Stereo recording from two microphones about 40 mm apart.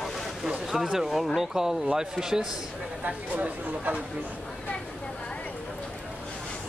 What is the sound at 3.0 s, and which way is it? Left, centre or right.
Speech, right.